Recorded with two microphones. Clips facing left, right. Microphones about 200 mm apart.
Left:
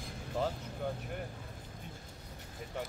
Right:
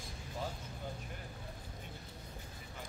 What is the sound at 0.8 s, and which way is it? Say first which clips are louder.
Speech: left 8 dB; 60° left (ahead or behind).